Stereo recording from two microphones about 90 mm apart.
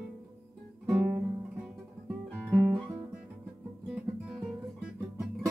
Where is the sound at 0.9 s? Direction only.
25° right (ahead or behind).